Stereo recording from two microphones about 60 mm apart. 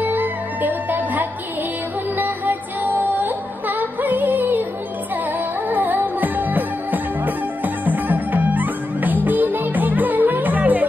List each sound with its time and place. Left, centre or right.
0.0 s music: right
5.7 s music: right